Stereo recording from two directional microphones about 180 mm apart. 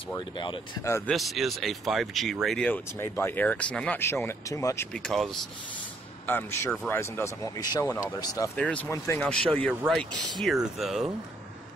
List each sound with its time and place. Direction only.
0.4 s speech: 25° left (ahead or behind)
1.1 s speech: centre (ahead or behind); by 8.5 s 20° left (ahead or behind)
8.5 s speech: 5° left (ahead or behind)